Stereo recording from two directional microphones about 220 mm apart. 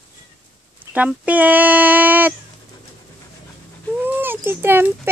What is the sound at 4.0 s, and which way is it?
Dog, 10° right (ahead or behind).